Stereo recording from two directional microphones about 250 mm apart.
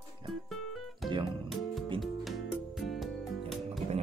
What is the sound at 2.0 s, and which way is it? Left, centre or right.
Music, centre.